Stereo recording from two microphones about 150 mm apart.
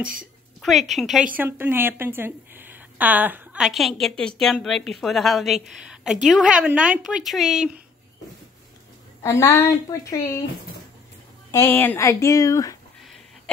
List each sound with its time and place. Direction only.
0.6 s a woman's voice: centre (ahead or behind)
9.2 s a woman's voice: 15° left (ahead or behind)
11.5 s speech: 15° left (ahead or behind)